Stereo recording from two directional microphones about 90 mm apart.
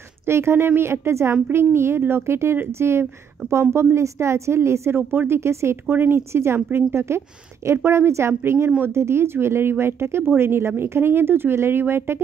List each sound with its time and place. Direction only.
0.2 s a woman's voice: 30° right (ahead or behind)
3.4 s speech: 20° right (ahead or behind)
3.7 s a woman's voice: 30° right (ahead or behind)